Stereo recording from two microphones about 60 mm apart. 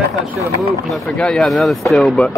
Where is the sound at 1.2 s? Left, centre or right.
Centre.